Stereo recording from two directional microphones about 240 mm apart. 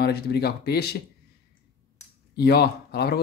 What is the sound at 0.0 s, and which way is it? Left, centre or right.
Speech, left.